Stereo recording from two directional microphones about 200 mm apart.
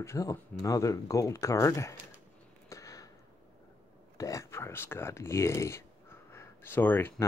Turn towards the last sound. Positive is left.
turn(degrees=10)  # may be behind; listen again after turning